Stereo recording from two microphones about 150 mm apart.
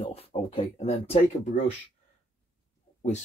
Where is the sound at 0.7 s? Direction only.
45° left (ahead or behind).